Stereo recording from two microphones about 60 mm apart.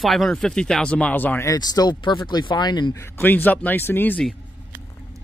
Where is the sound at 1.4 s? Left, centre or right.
Left.